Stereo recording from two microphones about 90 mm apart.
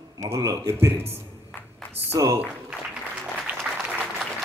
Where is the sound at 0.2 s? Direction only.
35° right (ahead or behind).